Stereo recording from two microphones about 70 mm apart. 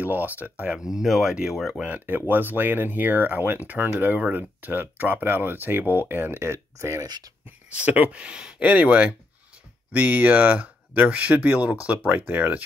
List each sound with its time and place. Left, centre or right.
0.0 s speech: right
0.9 s speech: centre
1.8 s speech: right
7.7 s speech: right